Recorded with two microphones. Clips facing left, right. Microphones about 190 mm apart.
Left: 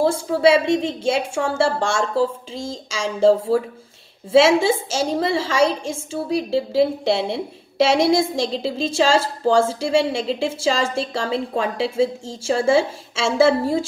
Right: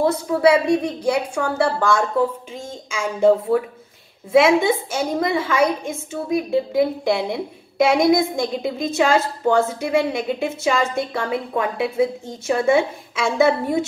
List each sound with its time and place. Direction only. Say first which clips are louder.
0.0 s a woman's voice: even; 30° left (ahead or behind)